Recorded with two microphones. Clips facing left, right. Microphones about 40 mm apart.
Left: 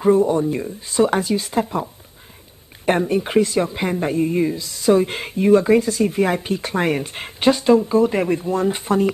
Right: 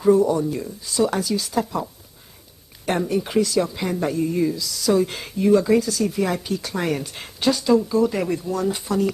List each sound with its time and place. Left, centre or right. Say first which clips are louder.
0.0 s speech: left 1 dB; left